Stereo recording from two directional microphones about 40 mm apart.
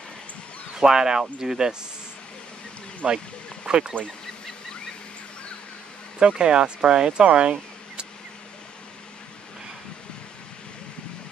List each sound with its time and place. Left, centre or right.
0.7 s speech: centre
3.0 s speech: centre
6.1 s speech: right